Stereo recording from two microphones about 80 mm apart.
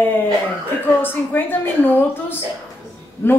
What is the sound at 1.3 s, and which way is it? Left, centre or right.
Speech, left.